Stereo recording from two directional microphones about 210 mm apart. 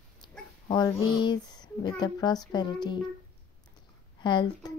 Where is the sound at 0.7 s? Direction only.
20° left (ahead or behind).